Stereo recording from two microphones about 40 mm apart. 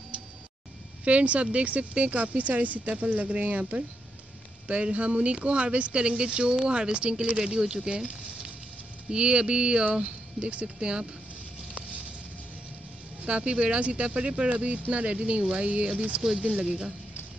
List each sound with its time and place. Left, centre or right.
1.0 s speech: right
13.2 s speech: right
16.6 s speech: centre